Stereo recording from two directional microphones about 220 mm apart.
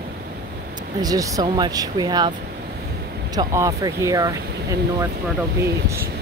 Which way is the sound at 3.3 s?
15° right (ahead or behind).